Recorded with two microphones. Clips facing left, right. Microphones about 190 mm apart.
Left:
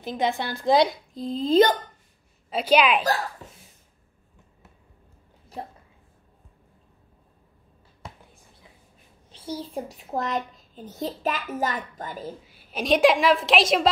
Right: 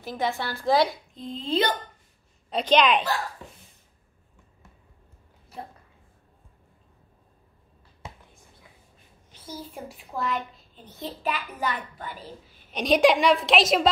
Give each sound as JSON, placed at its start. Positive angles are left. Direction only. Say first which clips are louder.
{"t": 0.0, "sound": "a woman's voice", "louder": "left 3 dB", "side_deg": 20}
{"t": 1.1, "sound": "a child's voice", "louder": "left 8 dB", "side_deg": 35}
{"t": 2.5, "sound": "a woman's voice", "louder": "left 1 dB", "side_deg": 10}
{"t": 9.3, "sound": "a child's voice", "louder": "left 7 dB", "side_deg": 30}
{"t": 12.5, "sound": "a woman's voice", "louder": "even", "side_deg": 0}